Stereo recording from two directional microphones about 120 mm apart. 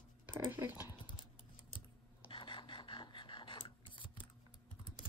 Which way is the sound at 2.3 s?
45° left (ahead or behind).